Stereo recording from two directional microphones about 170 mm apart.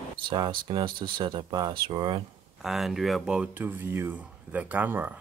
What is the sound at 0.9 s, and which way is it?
Speech, 60° right (ahead or behind).